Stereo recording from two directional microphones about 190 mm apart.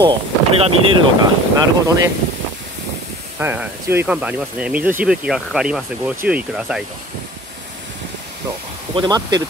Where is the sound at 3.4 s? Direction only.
10° right (ahead or behind).